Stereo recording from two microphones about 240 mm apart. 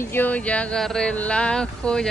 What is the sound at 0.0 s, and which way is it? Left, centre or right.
Speech, centre.